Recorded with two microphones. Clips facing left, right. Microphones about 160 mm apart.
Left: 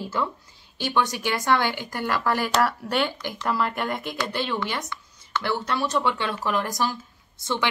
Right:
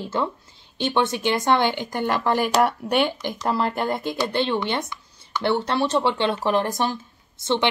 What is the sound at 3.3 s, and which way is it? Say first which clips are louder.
Speech: right 2 dB; 30° right (ahead or behind).